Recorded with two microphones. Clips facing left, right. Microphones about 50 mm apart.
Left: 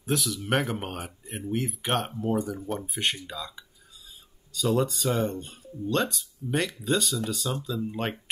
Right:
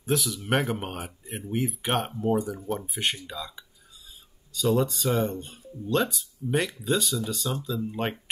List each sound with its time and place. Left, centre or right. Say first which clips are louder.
0.0 s speech: right 1 dB; centre